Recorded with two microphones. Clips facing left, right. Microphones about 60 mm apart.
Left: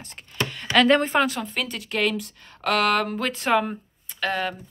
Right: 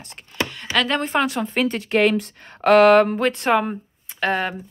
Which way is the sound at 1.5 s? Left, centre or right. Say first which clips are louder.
Right 10 dB; right.